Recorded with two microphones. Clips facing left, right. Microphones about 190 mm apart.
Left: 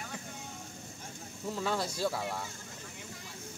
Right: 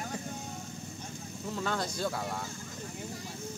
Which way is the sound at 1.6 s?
5° left (ahead or behind).